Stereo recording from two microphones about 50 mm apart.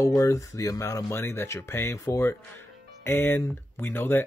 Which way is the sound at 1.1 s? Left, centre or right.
Left.